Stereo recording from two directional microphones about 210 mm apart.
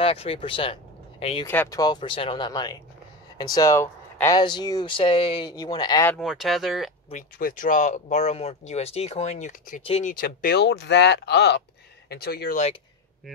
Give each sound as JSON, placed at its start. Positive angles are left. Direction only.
{"t": 0.0, "sound": "speech", "side_deg": 25}
{"t": 1.4, "sound": "speech", "side_deg": 10}
{"t": 6.0, "sound": "speech", "side_deg": 0}
{"t": 7.1, "sound": "speech", "side_deg": 40}
{"t": 10.1, "sound": "speech", "side_deg": 45}